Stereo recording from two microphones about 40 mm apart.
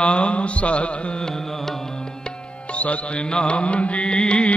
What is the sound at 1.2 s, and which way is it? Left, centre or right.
Carnatic music, centre.